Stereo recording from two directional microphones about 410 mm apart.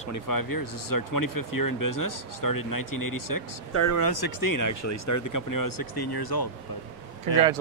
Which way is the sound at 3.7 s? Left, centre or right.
Left.